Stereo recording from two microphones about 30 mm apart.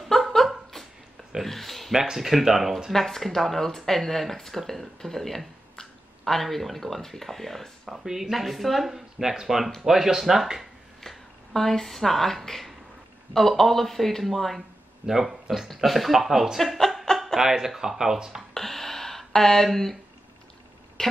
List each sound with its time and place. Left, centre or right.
0.1 s a sound: centre
1.4 s speech: centre
2.0 s speech: centre
2.9 s speech: centre
7.9 s speech: centre
8.3 s speech: centre
11.0 s speech: centre
15.0 s speech: centre
15.7 s speech: centre
17.1 s a sound: left
17.4 s speech: centre
18.5 s a sound: centre
21.0 s a sound: centre